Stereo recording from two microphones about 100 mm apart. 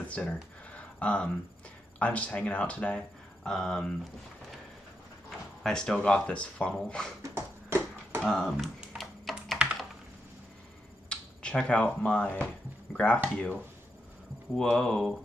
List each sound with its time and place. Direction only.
0.0 s a sound: 15° left (ahead or behind)
2.0 s speech: 15° left (ahead or behind)
5.6 s speech: 5° left (ahead or behind)
7.2 s a sound: 25° right (ahead or behind)
8.2 s computer keyboard: 5° left (ahead or behind)
11.1 s speech: 10° left (ahead or behind)
14.5 s speech: 5° left (ahead or behind)